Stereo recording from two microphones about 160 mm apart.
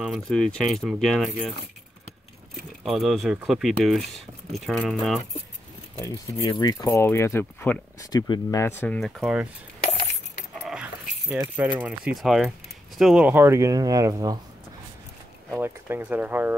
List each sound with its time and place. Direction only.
0.0 s speech: centre (ahead or behind)
2.8 s speech: centre (ahead or behind)
5.9 s speech: 20° left (ahead or behind)
8.1 s speech: 25° left (ahead or behind); by 9.5 s 5° right (ahead or behind)
10.7 s dog: 10° right (ahead or behind)
11.5 s speech: 10° right (ahead or behind)
15.5 s speech: 15° right (ahead or behind)